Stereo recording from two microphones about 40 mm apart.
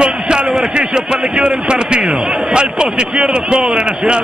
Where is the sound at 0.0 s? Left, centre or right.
Right.